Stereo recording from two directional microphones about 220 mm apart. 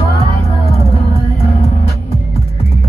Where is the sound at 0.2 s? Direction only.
30° left (ahead or behind).